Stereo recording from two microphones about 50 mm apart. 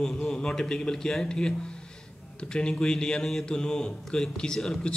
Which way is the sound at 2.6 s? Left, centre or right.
Centre.